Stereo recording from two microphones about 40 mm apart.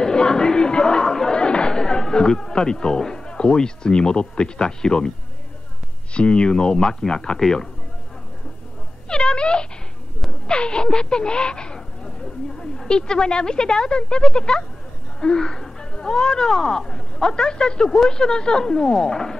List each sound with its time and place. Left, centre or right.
0.0 s speech: centre
6.1 s speech: left; by 7.6 s centre
9.1 s speech: left